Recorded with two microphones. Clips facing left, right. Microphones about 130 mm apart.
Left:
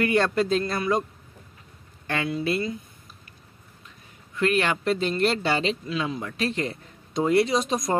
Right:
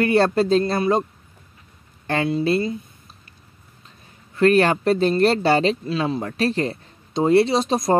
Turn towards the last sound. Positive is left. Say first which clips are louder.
# right 5 dB
turn(degrees=-30)  # may be behind; listen again after turning